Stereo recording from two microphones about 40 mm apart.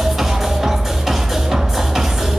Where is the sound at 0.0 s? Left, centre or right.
Centre.